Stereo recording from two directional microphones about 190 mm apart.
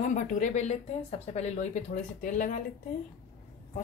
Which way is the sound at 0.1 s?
45° left (ahead or behind).